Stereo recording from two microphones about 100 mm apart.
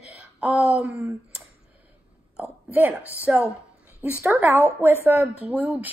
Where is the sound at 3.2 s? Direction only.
15° right (ahead or behind).